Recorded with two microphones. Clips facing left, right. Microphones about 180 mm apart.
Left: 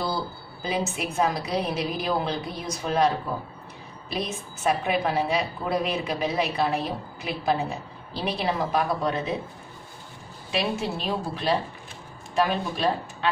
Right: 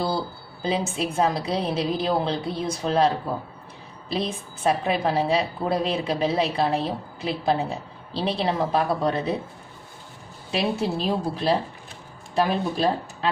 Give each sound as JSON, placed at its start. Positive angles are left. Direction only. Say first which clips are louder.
{"t": 0.7, "sound": "a woman's voice", "louder": "right 3 dB", "side_deg": -30}
{"t": 4.1, "sound": "a woman's voice", "louder": "right 3 dB", "side_deg": -30}
{"t": 10.5, "sound": "a woman's voice", "louder": "right 3 dB", "side_deg": -35}